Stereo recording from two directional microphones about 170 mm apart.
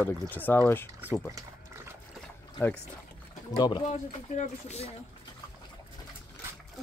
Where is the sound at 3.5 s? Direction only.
25° left (ahead or behind).